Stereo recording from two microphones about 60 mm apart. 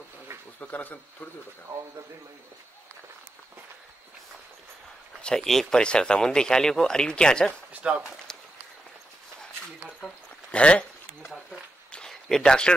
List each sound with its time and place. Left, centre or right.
0.6 s speech: left
5.2 s speech: centre
7.8 s speech: centre
8.3 s run: centre
9.9 s speech: centre
11.9 s a sound: centre